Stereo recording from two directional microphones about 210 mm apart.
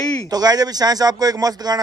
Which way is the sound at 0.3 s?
20° right (ahead or behind).